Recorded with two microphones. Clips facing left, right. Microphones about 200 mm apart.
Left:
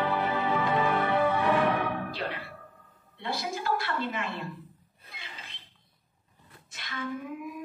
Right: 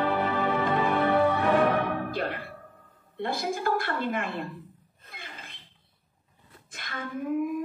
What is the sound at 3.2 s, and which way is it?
Speech, 50° right (ahead or behind).